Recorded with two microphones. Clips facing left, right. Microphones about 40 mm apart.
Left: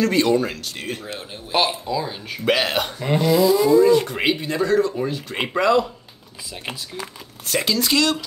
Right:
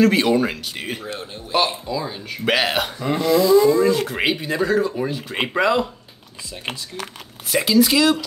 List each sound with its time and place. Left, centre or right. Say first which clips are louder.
0.0 s speech: right 2 dB; centre
1.5 s speech: even; centre
7.4 s speech: right 5 dB; centre